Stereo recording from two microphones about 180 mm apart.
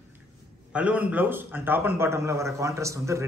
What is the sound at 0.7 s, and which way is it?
A man's voice, 5° right (ahead or behind).